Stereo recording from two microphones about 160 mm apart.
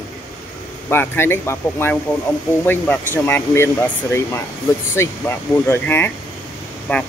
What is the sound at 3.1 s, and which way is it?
Speech, 15° left (ahead or behind).